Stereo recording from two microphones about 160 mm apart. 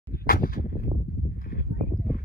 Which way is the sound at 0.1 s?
65° left (ahead or behind).